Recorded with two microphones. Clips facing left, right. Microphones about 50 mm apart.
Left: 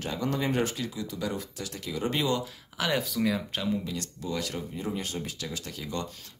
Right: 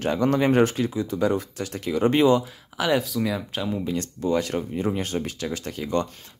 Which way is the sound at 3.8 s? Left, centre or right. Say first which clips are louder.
Right 9 dB; right.